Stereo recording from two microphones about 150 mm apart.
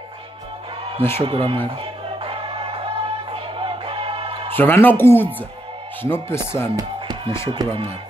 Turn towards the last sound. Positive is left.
turn(degrees=-35)  # may be behind; listen again after turning